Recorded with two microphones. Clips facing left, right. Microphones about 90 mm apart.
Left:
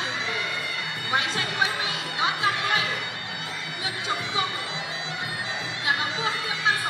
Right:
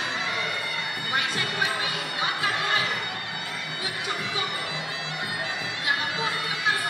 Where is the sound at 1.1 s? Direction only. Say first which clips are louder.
Left 2 dB; 20° left (ahead or behind).